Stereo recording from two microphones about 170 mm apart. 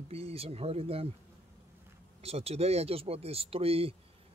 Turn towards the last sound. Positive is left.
turn(degrees=-35)  # may be behind; listen again after turning